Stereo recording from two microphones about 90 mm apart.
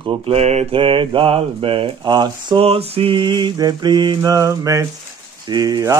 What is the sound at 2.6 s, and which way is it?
Mantra, 90° right.